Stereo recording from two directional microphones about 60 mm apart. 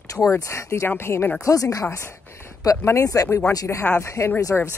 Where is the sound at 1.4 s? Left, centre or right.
Left.